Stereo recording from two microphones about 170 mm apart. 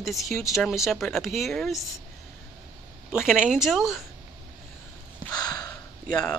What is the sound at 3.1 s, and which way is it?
Speech, 5° right (ahead or behind).